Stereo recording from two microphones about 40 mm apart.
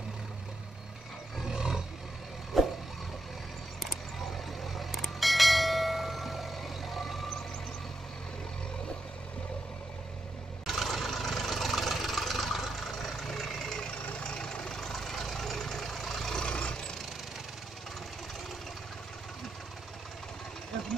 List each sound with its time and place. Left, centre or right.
1.5 s roar: centre
2.5 s vehicle: centre
4.7 s bell: centre
10.7 s vehicle: centre
14.2 s vehicle: left
14.8 s vehicle: centre
16.4 s vehicle: left